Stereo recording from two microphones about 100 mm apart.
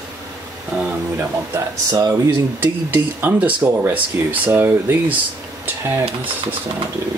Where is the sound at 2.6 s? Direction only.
20° right (ahead or behind).